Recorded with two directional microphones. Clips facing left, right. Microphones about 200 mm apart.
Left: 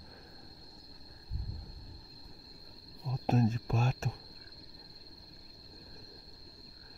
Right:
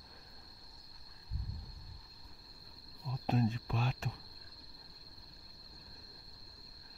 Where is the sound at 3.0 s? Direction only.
45° left (ahead or behind).